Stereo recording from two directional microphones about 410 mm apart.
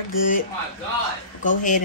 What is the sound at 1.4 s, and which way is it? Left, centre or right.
Speech, centre.